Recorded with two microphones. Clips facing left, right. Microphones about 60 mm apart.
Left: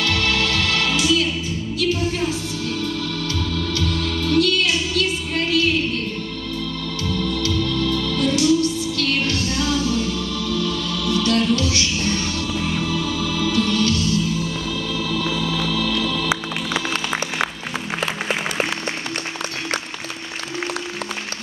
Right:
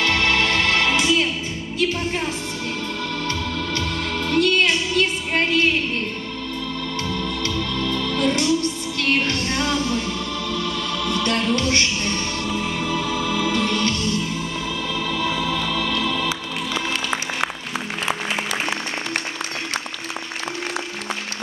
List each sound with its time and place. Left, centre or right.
0.0 s music: right
3.7 s music: right
7.1 s organ: right
7.5 s music: right
15.0 s organ: centre
15.5 s music: centre